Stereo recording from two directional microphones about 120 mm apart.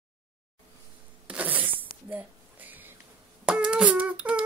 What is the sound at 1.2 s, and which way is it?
Zipper, 10° right (ahead or behind).